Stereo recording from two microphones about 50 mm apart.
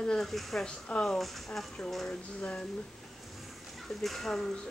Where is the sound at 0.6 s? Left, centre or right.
Left.